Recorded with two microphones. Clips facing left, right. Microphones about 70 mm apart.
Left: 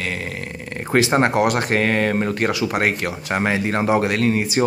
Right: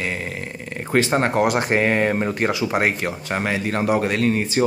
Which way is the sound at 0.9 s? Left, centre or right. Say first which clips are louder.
Left 2 dB; centre.